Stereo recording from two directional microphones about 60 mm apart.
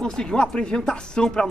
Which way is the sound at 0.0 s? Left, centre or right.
Centre.